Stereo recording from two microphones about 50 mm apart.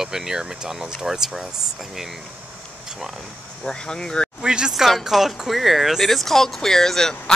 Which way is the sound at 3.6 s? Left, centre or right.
Centre.